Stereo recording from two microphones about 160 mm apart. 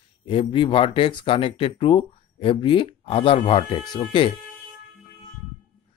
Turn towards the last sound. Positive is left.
turn(degrees=30)  # may be behind; listen again after turning